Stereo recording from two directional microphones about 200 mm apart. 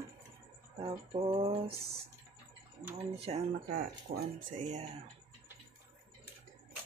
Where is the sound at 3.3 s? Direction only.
30° right (ahead or behind).